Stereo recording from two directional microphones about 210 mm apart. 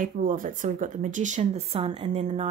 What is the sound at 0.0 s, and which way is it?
Speech, 40° right (ahead or behind).